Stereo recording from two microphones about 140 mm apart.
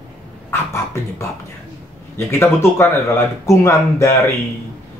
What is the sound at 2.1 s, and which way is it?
Speech, 20° left (ahead or behind).